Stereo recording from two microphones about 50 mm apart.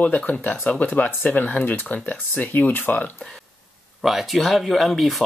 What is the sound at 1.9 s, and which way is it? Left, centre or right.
Speech, left.